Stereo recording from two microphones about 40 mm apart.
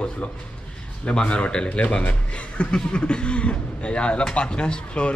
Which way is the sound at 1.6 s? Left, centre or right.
Left.